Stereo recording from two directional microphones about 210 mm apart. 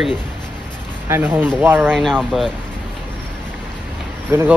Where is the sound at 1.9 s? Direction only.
5° left (ahead or behind).